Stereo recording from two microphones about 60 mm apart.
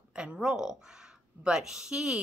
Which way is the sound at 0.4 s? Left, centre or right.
Centre.